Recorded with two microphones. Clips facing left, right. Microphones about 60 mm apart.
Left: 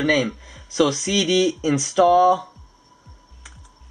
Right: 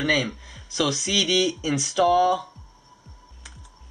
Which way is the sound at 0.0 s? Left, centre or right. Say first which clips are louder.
Left 4 dB; centre.